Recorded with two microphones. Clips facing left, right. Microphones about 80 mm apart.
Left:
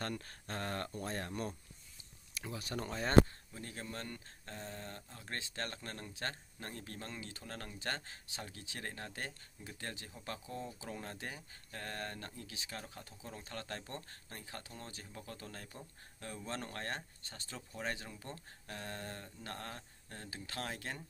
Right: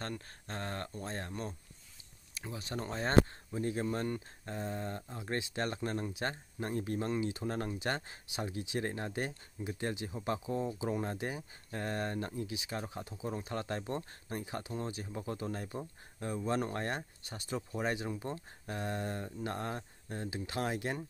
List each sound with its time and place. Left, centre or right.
0.0 s speech: right